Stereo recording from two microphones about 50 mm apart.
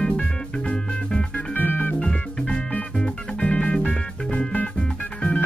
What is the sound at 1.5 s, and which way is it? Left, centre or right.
Music, left.